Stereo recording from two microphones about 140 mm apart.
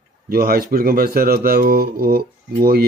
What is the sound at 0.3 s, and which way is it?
Speech, 90° right.